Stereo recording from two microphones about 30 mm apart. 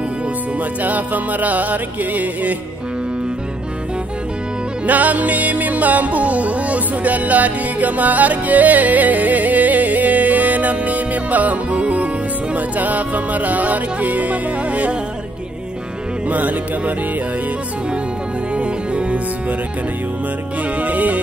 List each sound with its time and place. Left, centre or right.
0.6 s music: right
4.8 s music: right
16.3 s music: right
18.5 s music: right
20.7 s music: right